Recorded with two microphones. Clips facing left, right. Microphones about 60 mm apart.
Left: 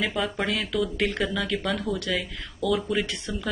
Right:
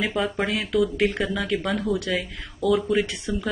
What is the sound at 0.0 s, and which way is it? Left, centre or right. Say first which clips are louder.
Speech: right 2 dB; centre.